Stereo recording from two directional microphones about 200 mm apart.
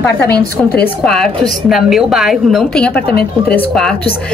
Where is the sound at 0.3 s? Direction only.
55° left (ahead or behind).